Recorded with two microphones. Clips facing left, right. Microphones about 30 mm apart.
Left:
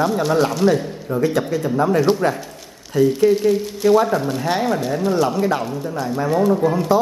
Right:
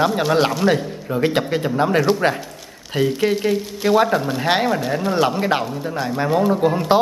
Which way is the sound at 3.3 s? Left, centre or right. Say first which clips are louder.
Left 3 dB; right.